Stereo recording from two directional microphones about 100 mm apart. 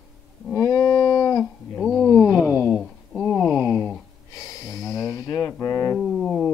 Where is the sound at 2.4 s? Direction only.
15° right (ahead or behind).